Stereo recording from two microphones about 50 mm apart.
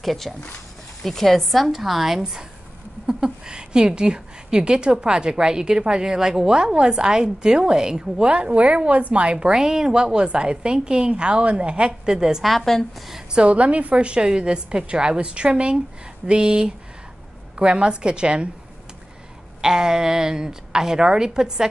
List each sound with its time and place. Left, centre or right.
0.0 s a woman's voice: centre
12.4 s a woman's voice: centre
13.1 s a woman's voice: centre
19.6 s a woman's voice: centre